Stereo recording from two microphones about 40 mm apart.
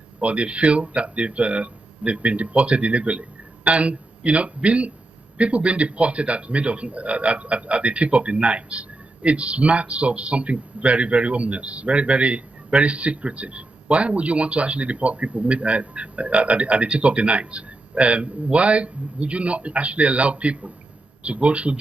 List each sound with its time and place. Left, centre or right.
0.2 s a man's voice: right